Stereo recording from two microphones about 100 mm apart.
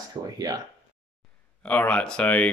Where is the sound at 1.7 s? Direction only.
15° left (ahead or behind).